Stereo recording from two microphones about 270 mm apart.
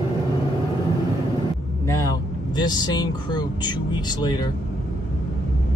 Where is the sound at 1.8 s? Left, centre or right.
Centre.